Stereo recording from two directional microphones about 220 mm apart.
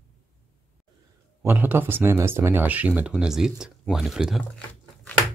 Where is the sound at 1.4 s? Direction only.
10° right (ahead or behind).